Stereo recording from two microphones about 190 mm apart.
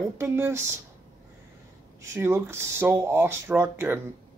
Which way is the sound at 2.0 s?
15° right (ahead or behind).